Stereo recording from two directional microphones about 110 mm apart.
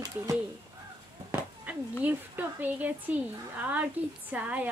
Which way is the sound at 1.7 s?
15° right (ahead or behind).